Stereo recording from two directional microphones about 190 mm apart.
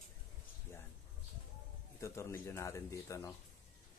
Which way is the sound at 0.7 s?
15° left (ahead or behind).